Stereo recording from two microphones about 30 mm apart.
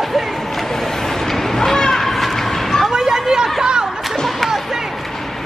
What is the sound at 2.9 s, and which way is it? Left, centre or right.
Chatter, centre.